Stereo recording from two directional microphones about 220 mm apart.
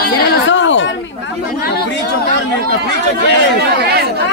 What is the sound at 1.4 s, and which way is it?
Speech, 45° left (ahead or behind).